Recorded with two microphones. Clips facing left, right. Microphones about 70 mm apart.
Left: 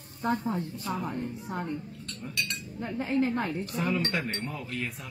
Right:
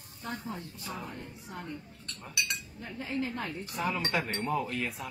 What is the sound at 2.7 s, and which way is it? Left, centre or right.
Speech, left.